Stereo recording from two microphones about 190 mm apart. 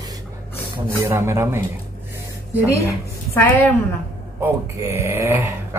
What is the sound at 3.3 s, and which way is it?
Speech, 10° left (ahead or behind).